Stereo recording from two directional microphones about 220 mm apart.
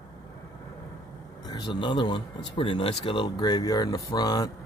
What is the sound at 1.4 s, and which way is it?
Speech, 20° left (ahead or behind).